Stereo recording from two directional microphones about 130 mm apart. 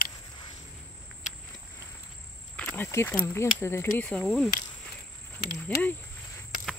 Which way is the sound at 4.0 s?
5° left (ahead or behind).